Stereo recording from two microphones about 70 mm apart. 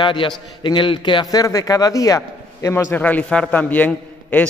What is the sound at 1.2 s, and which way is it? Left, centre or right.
A man's voice, left.